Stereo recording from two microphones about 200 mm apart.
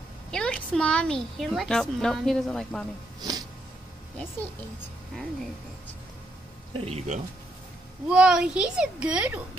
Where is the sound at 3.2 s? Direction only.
20° right (ahead or behind).